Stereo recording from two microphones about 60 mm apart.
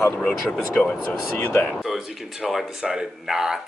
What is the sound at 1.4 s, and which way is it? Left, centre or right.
Speech, left.